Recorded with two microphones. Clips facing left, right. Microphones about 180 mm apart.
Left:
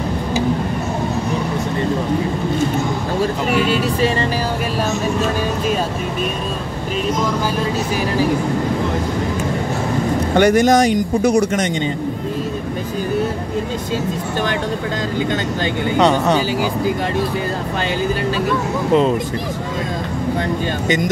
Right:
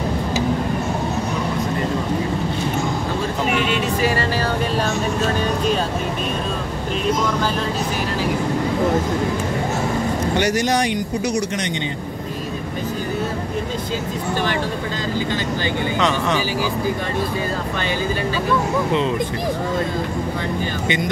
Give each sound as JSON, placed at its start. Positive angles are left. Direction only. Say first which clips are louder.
{"t": 3.5, "sound": "vehicle", "louder": "left 3 dB", "side_deg": 40}
{"t": 10.3, "sound": "speech", "louder": "left 8 dB", "side_deg": 55}
{"t": 16.0, "sound": "speech", "louder": "left 7 dB", "side_deg": 35}